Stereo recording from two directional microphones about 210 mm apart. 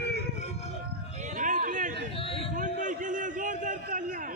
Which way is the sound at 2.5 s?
35° right (ahead or behind).